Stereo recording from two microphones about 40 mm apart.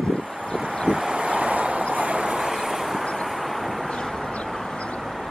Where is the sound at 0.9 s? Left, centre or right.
Right.